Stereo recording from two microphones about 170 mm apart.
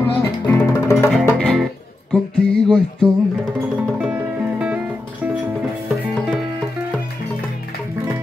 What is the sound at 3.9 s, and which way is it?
Music, 5° right (ahead or behind).